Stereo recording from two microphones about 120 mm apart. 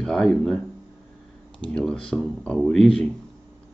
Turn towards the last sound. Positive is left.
turn(degrees=5)  # may be behind; listen again after turning